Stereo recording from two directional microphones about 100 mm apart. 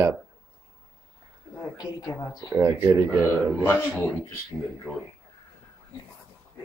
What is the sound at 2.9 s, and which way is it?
Speech, 15° right (ahead or behind).